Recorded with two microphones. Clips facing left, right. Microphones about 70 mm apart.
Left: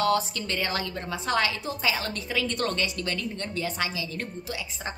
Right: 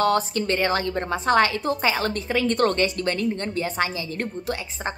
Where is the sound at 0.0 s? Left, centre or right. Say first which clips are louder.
Right 4 dB; right.